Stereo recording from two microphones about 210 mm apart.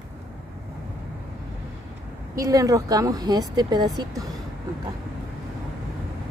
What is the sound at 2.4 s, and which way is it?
Speech, 15° right (ahead or behind).